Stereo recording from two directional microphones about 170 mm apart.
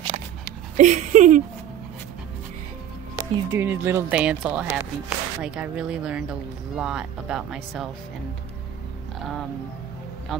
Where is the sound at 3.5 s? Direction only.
10° right (ahead or behind).